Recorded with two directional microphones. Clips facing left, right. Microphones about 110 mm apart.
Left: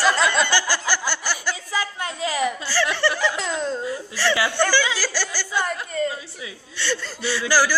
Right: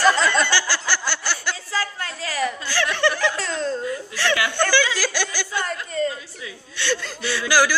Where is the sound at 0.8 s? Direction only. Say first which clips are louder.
Left 1 dB; 10° left (ahead or behind).